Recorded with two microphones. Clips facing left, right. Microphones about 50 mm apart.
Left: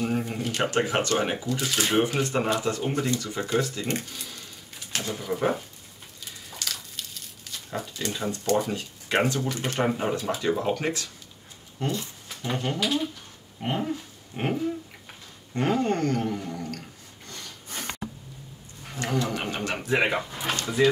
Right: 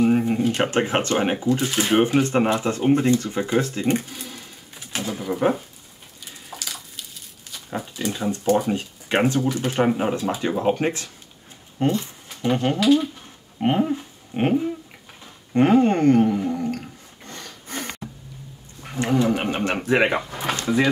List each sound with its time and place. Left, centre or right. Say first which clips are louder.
0.0 s speech: right 9 dB; right
2.2 s speech: right 5 dB; right
3.8 s speech: right 8 dB; centre
4.9 s pigeon: right 3 dB; centre
6.6 s a sound: left 3 dB; centre
7.7 s speech: right 4 dB; centre
8.7 s speech: right 3 dB; right
15.5 s speech: right 8 dB; right
17.3 s snort: right 5 dB; right
18.9 s speech: right 7 dB; right